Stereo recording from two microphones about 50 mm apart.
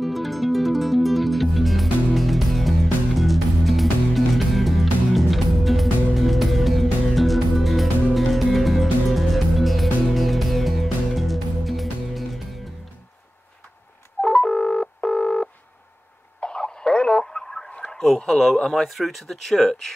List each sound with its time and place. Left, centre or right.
0.0 s music: centre
14.2 s telephone dialing: centre
16.3 s radio: centre
18.0 s speech: centre